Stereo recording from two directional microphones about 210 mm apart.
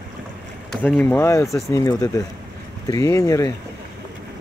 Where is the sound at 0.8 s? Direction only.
10° left (ahead or behind).